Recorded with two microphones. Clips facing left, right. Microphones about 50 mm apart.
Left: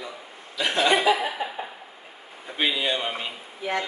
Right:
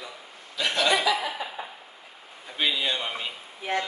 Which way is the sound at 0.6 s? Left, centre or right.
Left.